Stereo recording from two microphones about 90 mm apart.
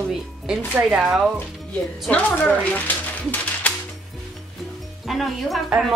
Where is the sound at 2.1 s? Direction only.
20° left (ahead or behind).